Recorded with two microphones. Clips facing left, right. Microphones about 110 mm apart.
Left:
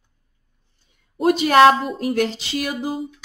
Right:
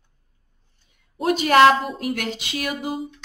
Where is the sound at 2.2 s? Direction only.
35° left (ahead or behind).